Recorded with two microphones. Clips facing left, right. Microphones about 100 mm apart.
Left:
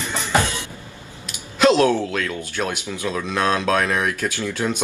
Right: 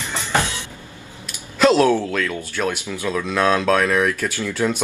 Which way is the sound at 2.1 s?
25° left (ahead or behind).